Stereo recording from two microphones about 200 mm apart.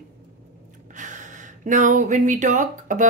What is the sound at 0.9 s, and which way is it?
Gasp, 40° right (ahead or behind).